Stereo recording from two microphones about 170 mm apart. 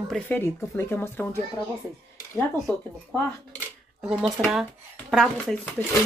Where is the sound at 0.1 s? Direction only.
10° left (ahead or behind).